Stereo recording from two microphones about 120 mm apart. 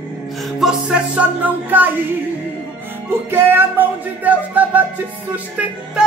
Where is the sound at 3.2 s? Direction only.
20° right (ahead or behind).